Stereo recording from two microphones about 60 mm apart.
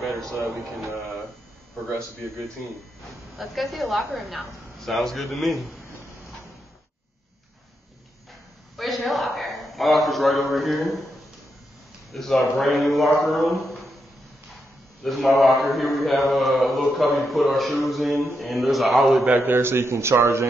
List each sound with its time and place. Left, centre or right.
0.7 s a man's voice: centre
3.3 s a man's voice: centre
5.9 s a sound: left
8.7 s a sound: centre
12.1 s a man's voice: centre
15.0 s a man's voice: centre
19.2 s a man's voice: right